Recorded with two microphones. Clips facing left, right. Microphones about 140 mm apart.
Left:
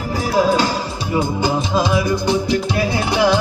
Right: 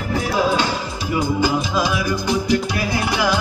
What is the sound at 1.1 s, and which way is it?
Music, 30° left (ahead or behind).